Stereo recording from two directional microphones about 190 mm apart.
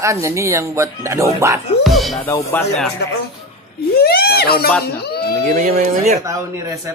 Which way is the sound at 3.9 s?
55° left (ahead or behind).